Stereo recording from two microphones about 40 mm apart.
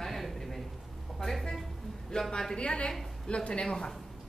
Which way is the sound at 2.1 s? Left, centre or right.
Left.